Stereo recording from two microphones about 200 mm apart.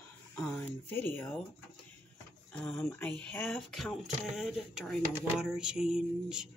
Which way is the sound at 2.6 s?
5° left (ahead or behind).